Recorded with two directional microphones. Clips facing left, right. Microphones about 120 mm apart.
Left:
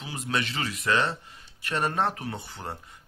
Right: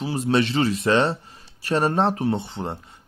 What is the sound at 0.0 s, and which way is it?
Speech, 35° right (ahead or behind).